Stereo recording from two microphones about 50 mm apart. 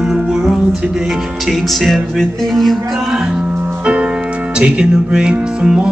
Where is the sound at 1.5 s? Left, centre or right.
Centre.